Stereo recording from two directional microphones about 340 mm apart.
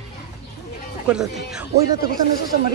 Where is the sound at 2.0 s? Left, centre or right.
Left.